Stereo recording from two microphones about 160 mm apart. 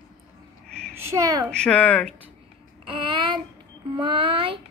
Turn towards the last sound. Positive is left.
turn(degrees=-35)  # may be behind; listen again after turning